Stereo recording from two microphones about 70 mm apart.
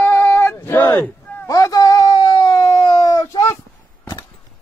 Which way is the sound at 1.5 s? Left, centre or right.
Left.